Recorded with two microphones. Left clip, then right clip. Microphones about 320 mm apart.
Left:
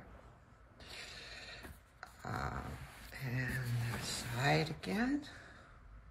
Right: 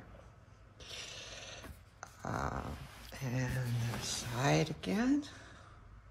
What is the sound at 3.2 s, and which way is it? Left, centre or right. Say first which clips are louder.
Speech: right 2 dB; right.